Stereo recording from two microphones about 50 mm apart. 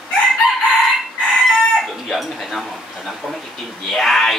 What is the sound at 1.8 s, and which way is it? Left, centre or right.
Speech, centre.